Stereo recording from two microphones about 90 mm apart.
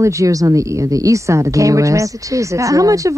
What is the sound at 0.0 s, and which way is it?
A woman's voice, 35° right (ahead or behind).